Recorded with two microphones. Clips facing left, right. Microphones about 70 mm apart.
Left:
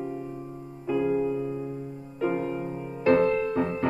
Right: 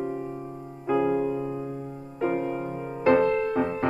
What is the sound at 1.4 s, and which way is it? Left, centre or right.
Music, centre.